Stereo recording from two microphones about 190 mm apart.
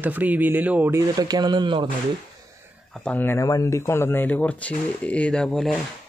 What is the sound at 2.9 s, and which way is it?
Speech, 5° left (ahead or behind).